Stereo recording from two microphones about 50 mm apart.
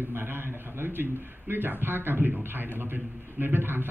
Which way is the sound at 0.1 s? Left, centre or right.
Right.